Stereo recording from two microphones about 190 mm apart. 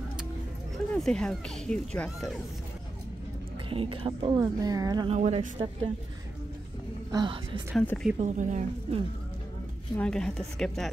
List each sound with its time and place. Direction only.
0.9 s a woman's voice: 5° left (ahead or behind)
3.6 s speech: 30° right (ahead or behind)
5.1 s a woman's voice: 35° right (ahead or behind)
7.1 s speech: 20° right (ahead or behind)
7.7 s a woman's voice: 5° left (ahead or behind)
8.2 s a woman's voice: 40° right (ahead or behind)
9.9 s a woman's voice: 5° left (ahead or behind)